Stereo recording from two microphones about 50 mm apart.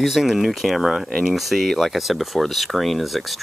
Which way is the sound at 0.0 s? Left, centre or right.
Centre.